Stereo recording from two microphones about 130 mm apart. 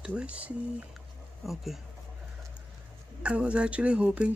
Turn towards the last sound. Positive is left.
turn(degrees=-10)  # may be behind; listen again after turning